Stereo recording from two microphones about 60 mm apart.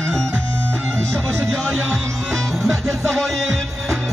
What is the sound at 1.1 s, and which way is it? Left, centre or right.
Music, right.